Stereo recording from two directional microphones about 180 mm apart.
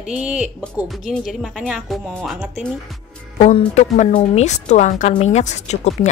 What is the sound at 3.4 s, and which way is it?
A woman's voice, 40° left (ahead or behind).